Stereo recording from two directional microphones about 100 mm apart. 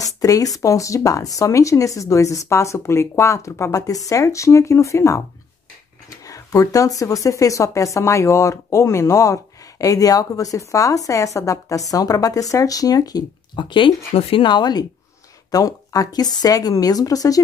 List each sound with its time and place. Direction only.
0.0 s speech: 35° left (ahead or behind)